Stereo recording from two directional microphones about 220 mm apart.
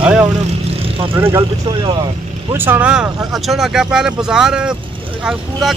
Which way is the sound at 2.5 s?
10° right (ahead or behind).